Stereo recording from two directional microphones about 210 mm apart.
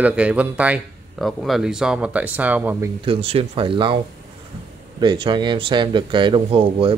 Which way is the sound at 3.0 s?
25° right (ahead or behind).